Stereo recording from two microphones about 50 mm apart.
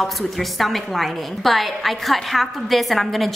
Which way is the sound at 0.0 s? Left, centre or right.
Centre.